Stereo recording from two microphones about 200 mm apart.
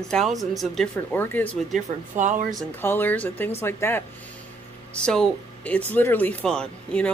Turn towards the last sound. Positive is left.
turn(degrees=5)  # may be behind; listen again after turning